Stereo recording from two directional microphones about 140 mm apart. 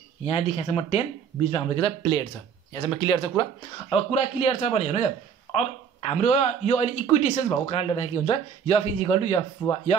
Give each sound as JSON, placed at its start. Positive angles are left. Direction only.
{"t": 0.2, "sound": "speech", "side_deg": 50}
{"t": 3.9, "sound": "speech", "side_deg": 45}
{"t": 6.2, "sound": "speech", "side_deg": 60}